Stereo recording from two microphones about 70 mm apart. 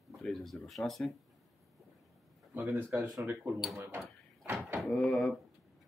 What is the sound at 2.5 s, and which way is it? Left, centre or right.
Speech, right.